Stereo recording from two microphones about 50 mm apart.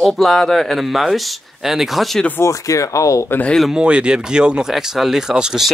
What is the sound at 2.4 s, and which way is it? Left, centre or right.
Speech, left.